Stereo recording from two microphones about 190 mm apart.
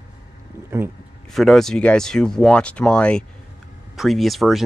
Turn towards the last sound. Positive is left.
turn(degrees=0)  # may be behind; listen again after turning